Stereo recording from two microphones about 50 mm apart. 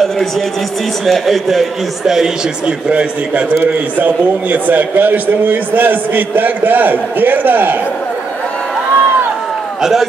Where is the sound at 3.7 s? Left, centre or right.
Right.